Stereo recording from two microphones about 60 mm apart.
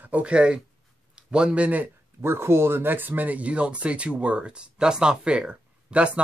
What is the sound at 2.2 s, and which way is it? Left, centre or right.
Speech, right.